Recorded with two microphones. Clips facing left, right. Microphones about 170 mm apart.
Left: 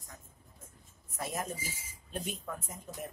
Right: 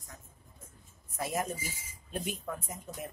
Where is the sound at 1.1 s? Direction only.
10° right (ahead or behind).